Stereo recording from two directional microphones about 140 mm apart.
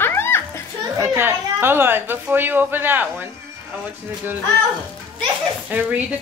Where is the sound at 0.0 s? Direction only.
15° left (ahead or behind).